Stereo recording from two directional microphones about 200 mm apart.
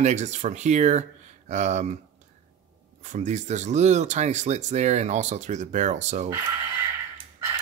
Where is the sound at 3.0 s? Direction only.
35° right (ahead or behind).